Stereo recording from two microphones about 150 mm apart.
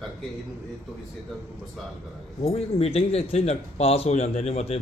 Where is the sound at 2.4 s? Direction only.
40° left (ahead or behind).